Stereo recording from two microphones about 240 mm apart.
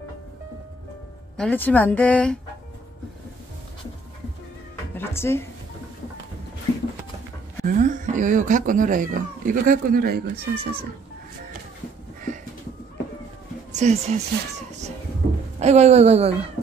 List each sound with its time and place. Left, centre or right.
1.3 s speech: centre
4.9 s music: centre
7.6 s speech: right
13.7 s speech: right
15.6 s a man's voice: right